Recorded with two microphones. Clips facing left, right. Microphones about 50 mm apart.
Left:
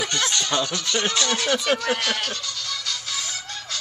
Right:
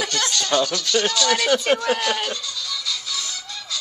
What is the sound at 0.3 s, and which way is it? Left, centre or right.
Speech, left.